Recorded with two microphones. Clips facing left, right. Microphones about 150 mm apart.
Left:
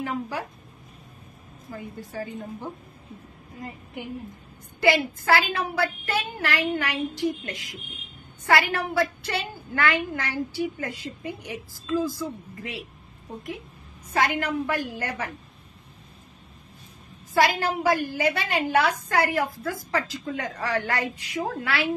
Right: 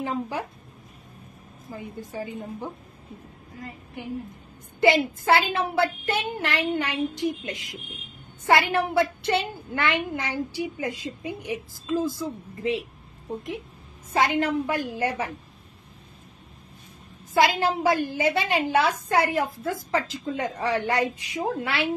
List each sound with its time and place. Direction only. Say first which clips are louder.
0.0 s a woman's voice: right 1 dB; 20° right (ahead or behind)
1.7 s a woman's voice: right 1 dB; 20° right (ahead or behind)
4.7 s a woman's voice: right 2 dB; 20° right (ahead or behind)
14.1 s a woman's voice: right 2 dB; 20° right (ahead or behind)
17.3 s a woman's voice: right 1 dB; 20° right (ahead or behind)